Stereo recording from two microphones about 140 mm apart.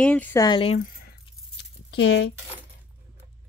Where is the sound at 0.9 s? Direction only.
90° left.